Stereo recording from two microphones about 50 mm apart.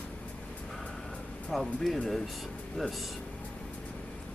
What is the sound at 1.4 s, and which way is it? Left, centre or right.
Speech, centre.